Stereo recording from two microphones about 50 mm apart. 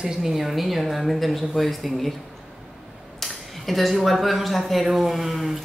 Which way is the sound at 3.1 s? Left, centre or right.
Centre.